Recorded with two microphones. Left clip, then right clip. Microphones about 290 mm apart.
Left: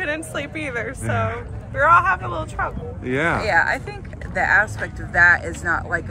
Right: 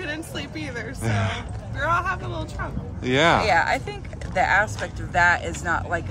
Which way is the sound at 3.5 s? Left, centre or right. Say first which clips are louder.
Left 2 dB; centre.